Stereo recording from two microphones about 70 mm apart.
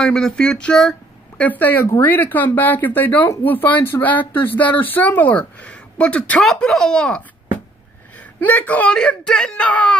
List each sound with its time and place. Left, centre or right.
0.0 s speech: centre
1.4 s speech: left
1.8 s speech: left
2.0 s speech: left; by 7.2 s centre
8.5 s speech: left
8.9 s speech: centre